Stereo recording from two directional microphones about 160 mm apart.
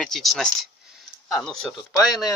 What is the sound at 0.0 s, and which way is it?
Speech, centre (ahead or behind).